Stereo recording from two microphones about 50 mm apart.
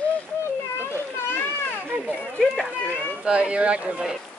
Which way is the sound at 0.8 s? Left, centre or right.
Left.